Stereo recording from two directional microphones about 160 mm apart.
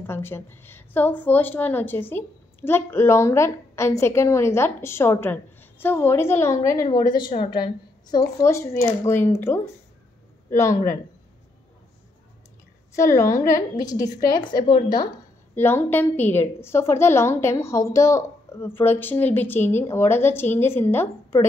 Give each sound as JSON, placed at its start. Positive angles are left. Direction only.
{"t": 0.0, "sound": "a woman's voice", "side_deg": 15}
{"t": 8.4, "sound": "a woman's voice", "side_deg": 15}
{"t": 12.9, "sound": "a woman's voice", "side_deg": 20}
{"t": 15.5, "sound": "a woman's voice", "side_deg": 15}